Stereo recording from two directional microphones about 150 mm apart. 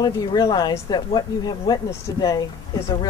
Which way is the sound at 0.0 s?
25° left (ahead or behind).